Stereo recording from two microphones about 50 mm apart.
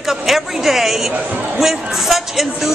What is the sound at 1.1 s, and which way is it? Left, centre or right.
Speech, right.